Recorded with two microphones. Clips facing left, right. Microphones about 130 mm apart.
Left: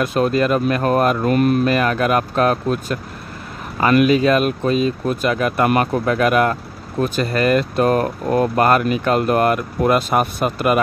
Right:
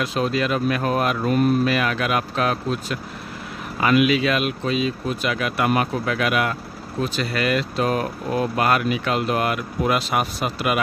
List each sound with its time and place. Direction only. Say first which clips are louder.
0.0 s speech: left 5 dB; 50° left (ahead or behind)
1.2 s speech: left 3 dB; 70° left (ahead or behind)
1.7 s speech: left 5 dB; 45° left (ahead or behind)